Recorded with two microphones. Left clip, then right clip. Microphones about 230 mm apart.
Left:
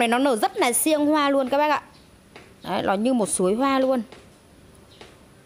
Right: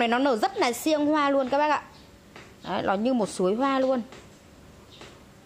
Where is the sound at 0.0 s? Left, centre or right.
Left.